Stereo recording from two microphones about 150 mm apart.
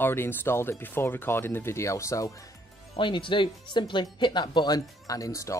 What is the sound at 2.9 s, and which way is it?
Speech, 35° left (ahead or behind).